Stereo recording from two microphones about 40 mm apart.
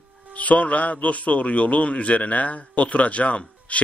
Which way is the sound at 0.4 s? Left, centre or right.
Left.